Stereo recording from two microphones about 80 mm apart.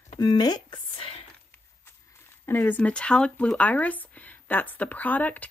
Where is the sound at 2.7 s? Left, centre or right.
Centre.